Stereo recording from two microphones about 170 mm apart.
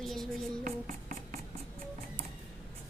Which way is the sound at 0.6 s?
55° right (ahead or behind).